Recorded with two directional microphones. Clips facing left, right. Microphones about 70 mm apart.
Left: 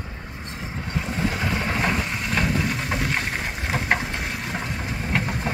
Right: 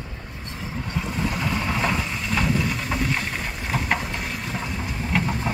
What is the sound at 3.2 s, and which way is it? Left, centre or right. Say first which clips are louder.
Boat: left 1 dB; left.